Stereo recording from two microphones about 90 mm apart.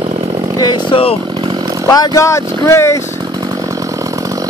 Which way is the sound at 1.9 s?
45° left (ahead or behind).